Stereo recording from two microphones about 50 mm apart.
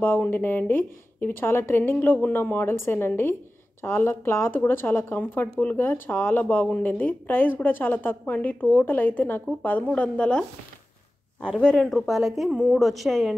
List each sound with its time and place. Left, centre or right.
0.3 s a woman's voice: left
9.8 s a woman's voice: left
11.4 s a woman's voice: centre
12.1 s a woman's voice: centre